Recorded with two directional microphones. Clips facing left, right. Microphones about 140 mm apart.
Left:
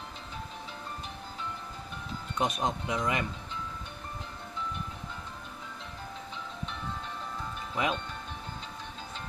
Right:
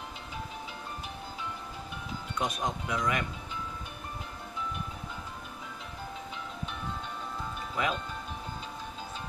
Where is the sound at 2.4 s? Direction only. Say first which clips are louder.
Left 3 dB; 25° left (ahead or behind).